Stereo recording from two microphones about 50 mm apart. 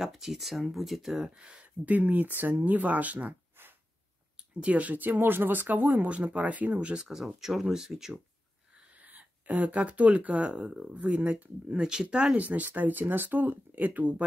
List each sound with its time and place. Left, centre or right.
0.0 s speech: centre
1.2 s speech: centre
1.6 s speech: right
4.6 s speech: right; by 8.2 s centre
8.9 s speech: right; by 12.4 s centre
12.4 s speech: right